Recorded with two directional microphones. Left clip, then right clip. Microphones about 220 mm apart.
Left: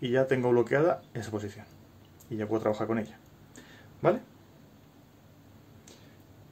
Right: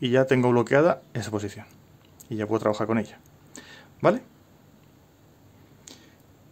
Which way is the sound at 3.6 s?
45° right (ahead or behind).